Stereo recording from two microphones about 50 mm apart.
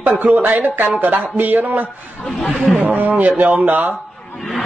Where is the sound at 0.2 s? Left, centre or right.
Right.